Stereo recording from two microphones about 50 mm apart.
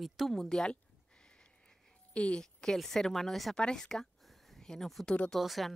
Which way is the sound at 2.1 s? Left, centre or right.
Left.